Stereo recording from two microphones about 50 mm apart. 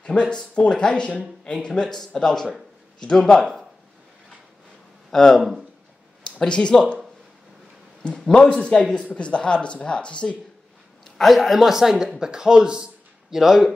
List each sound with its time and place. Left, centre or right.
0.0 s speech: centre
5.1 s speech: centre
6.4 s speech: centre
8.3 s speech: centre
11.1 s speech: centre
13.3 s speech: centre